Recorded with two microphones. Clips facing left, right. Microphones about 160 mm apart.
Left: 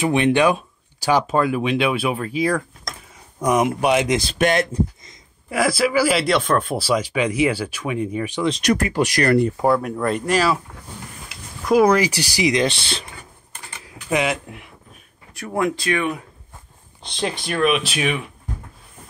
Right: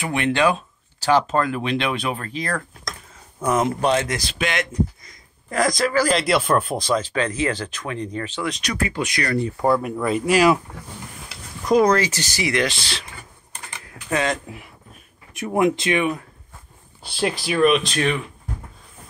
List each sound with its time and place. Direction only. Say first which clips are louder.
0.0 s speech: left 4 dB; 20° left (ahead or behind)
4.3 s speech: left 6 dB; 40° left (ahead or behind)
5.5 s speech: left 1 dB; 10° left (ahead or behind)
8.6 s speech: left 8 dB; 45° left (ahead or behind)
9.7 s speech: left 1 dB; centre (ahead or behind)
11.6 s speech: left 1 dB; 5° left (ahead or behind)
14.0 s speech: left 2 dB; 10° left (ahead or behind)
15.3 s speech: right 3 dB; 20° right (ahead or behind)
17.0 s speech: right 2 dB; 5° right (ahead or behind)